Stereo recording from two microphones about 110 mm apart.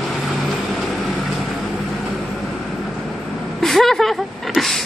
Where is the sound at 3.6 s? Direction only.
Centre (ahead or behind).